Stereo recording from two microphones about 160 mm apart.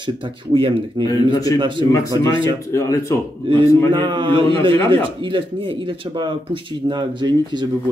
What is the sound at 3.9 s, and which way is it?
Speech, 30° right (ahead or behind).